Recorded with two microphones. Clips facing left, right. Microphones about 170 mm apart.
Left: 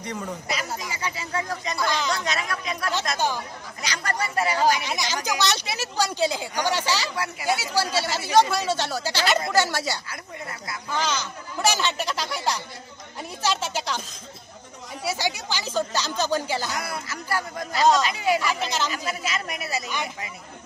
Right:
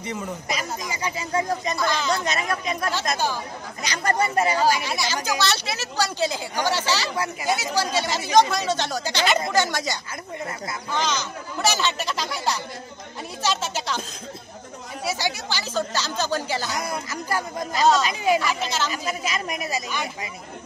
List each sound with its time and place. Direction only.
0.0 s speech: 5° right (ahead or behind)
0.6 s speech: 20° right (ahead or behind)
1.8 s speech: 15° left (ahead or behind)
2.2 s speech: 25° right (ahead or behind)
4.1 s speech: 20° right (ahead or behind)
4.6 s speech: 15° left (ahead or behind)
15.0 s speech: 10° left (ahead or behind)
17.1 s a woman's voice: 15° right (ahead or behind)
17.8 s speech: 15° left (ahead or behind)
19.0 s a woman's voice: 15° right (ahead or behind)